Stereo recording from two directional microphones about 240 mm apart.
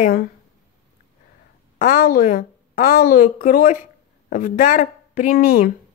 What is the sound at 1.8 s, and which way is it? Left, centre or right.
Speech, left.